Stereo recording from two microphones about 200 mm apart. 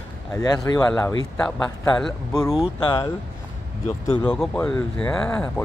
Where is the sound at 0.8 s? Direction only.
10° left (ahead or behind).